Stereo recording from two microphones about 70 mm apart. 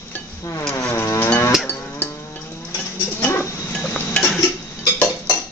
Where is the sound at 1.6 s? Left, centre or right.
Left.